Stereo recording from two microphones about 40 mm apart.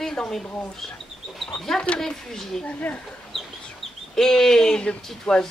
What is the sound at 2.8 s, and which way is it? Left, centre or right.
Speech, left.